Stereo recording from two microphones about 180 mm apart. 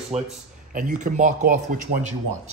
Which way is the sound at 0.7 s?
45° right (ahead or behind).